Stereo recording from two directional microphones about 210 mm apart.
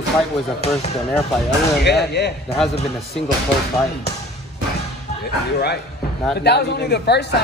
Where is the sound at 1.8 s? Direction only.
50° left (ahead or behind).